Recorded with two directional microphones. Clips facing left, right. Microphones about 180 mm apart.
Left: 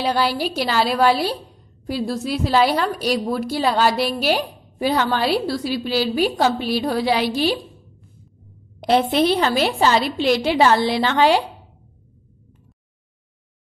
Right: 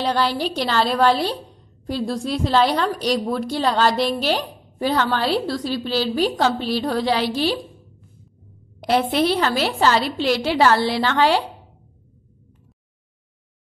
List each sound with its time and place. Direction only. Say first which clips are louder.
0.0 s a woman's voice: left 1 dB; 10° left (ahead or behind)
8.8 s a woman's voice: left 2 dB; 20° left (ahead or behind)